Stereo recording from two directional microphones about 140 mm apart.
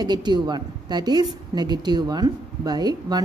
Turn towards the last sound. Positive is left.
turn(degrees=-30)  # may be behind; listen again after turning